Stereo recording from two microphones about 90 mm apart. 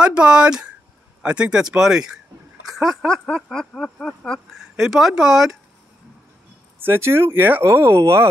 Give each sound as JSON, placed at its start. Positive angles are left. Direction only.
{"t": 0.0, "sound": "speech", "side_deg": -10}
{"t": 2.6, "sound": "a sound", "side_deg": 0}
{"t": 4.6, "sound": "speech", "side_deg": -5}
{"t": 6.8, "sound": "speech", "side_deg": -30}